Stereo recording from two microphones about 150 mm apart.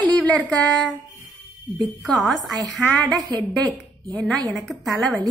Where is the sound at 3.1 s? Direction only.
25° right (ahead or behind).